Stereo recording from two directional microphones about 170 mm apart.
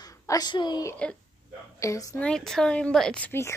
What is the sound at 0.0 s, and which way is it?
A woman's voice, 25° left (ahead or behind).